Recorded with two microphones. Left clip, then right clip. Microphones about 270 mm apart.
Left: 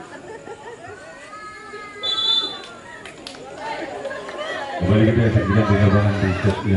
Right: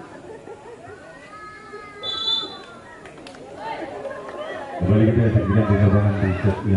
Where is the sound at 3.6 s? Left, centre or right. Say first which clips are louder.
Left 2 dB; centre.